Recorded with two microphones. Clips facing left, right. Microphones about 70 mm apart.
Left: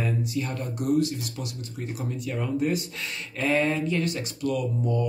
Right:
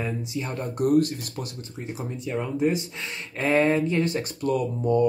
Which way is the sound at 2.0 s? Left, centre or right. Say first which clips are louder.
Right 2 dB; right.